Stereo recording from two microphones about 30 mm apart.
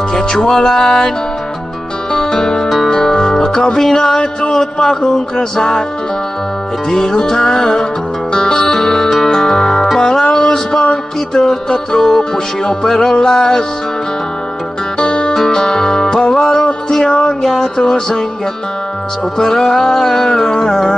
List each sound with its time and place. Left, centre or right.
0.1 s music: left
2.1 s music: left
4.2 s music: left
6.9 s music: centre
8.3 s music: left
10.3 s a sound: left
11.3 s music: centre
15.0 s music: left
15.3 s music: left
17.4 s music: centre
19.3 s music: centre